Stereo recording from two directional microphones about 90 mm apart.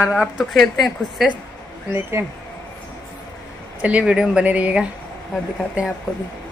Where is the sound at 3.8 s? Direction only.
10° right (ahead or behind).